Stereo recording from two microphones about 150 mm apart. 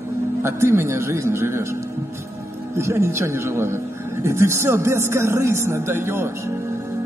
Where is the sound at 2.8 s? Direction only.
20° right (ahead or behind).